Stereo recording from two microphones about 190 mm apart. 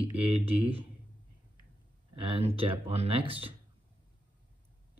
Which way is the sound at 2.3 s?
30° right (ahead or behind).